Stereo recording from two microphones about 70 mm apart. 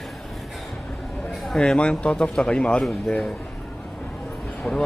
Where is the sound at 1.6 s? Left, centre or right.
Centre.